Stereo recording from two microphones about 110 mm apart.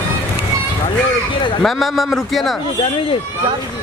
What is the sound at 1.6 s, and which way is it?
Speech, centre (ahead or behind).